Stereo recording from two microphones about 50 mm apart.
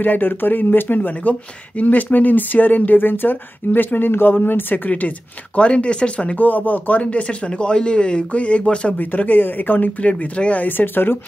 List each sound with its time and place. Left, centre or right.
0.0 s speech: left
5.6 s speech: left
8.9 s speech: left
10.7 s speech: left